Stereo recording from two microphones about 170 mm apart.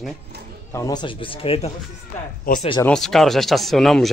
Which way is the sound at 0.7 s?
20° left (ahead or behind).